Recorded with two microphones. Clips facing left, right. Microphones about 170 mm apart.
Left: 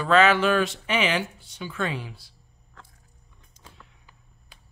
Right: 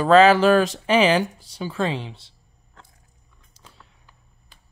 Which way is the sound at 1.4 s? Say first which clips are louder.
Right 5 dB; 35° right (ahead or behind).